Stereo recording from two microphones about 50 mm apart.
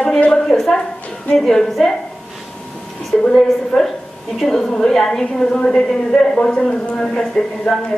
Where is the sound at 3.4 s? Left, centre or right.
Centre.